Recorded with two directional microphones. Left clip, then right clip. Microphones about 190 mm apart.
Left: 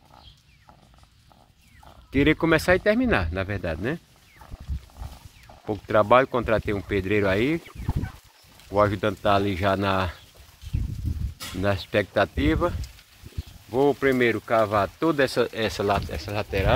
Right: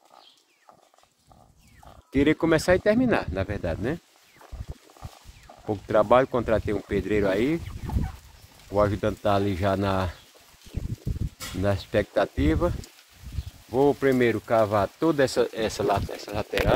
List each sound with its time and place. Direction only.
2.4 s speech: 15° right (ahead or behind)
5.7 s speech: 15° right (ahead or behind)
8.7 s speech: 5° right (ahead or behind)
11.6 s speech: 10° right (ahead or behind)
13.8 s speech: 15° right (ahead or behind)